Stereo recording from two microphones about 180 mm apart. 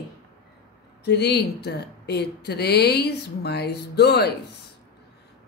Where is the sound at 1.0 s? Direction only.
70° left (ahead or behind).